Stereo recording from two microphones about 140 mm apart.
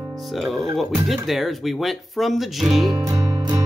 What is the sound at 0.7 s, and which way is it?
Speech, centre (ahead or behind).